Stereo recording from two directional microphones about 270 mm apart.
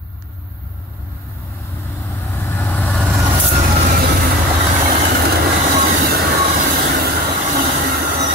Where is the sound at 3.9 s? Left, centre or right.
Right.